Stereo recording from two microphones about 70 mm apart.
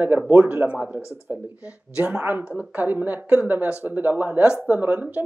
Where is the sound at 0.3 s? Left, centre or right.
Right.